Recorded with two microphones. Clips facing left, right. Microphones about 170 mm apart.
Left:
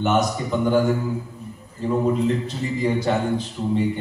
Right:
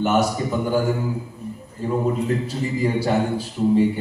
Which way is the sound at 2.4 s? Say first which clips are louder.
Right 1 dB; 10° right (ahead or behind).